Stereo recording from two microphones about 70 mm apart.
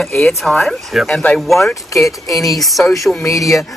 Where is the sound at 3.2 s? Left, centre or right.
Left.